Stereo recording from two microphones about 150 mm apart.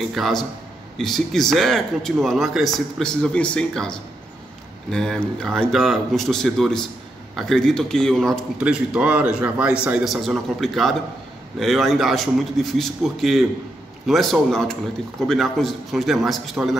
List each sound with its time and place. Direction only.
0.1 s speech: centre (ahead or behind)